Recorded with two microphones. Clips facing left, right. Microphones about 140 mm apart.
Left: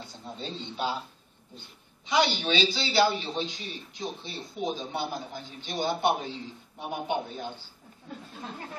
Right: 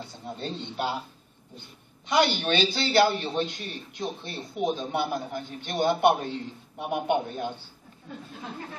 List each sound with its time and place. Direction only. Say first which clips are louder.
0.1 s a man's voice: right 3 dB; 55° right (ahead or behind)
2.0 s a man's voice: right 2 dB; 55° right (ahead or behind)